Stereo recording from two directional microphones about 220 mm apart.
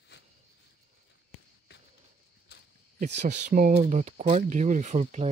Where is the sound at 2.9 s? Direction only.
35° right (ahead or behind).